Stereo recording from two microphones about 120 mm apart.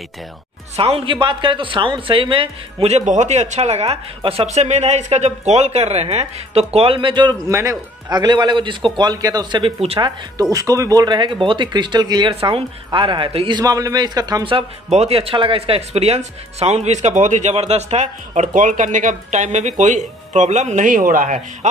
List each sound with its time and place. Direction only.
0.7 s a man's voice: 50° right (ahead or behind)
3.1 s a man's voice: 75° right (ahead or behind); by 7.3 s 40° right (ahead or behind)
7.4 s a man's voice: 25° right (ahead or behind)
8.1 s speech: 35° right (ahead or behind); by 9.9 s 50° right (ahead or behind)
9.9 s speech: 40° right (ahead or behind)
10.5 s speech: 30° right (ahead or behind); by 13.6 s 45° right (ahead or behind)
13.6 s speech: 30° right (ahead or behind)
14.9 s speech: 60° right (ahead or behind); by 21.4 s 90° right